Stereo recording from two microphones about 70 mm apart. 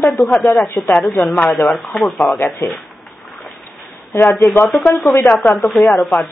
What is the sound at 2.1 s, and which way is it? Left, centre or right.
Speech, left.